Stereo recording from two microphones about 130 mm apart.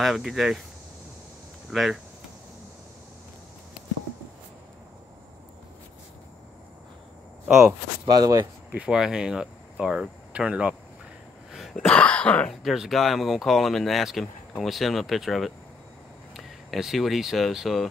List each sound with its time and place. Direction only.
0.0 s speech: centre (ahead or behind)
1.7 s speech: centre (ahead or behind)
8.0 s speech: 30° right (ahead or behind)
8.7 s speech: 5° right (ahead or behind)
11.5 s throat clearing: centre (ahead or behind)
12.6 s speech: centre (ahead or behind)